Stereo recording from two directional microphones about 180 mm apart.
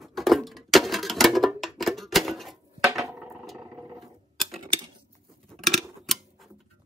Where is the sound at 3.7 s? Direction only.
20° right (ahead or behind).